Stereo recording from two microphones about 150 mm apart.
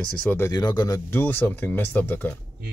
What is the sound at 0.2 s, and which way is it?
Speech, 10° left (ahead or behind).